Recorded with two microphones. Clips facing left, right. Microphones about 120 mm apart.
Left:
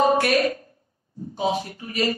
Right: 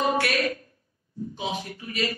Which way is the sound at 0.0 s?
35° left (ahead or behind).